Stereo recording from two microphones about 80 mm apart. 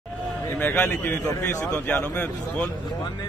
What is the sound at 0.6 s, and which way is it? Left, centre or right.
A man's voice, left.